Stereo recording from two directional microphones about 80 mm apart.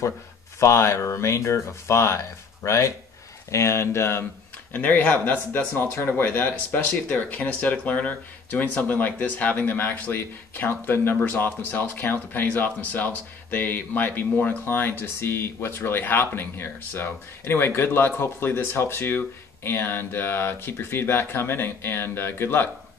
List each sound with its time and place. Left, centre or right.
0.6 s speech: left
4.7 s speech: left